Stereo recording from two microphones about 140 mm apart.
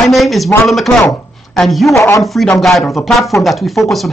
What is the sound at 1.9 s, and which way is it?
Speech, 20° left (ahead or behind).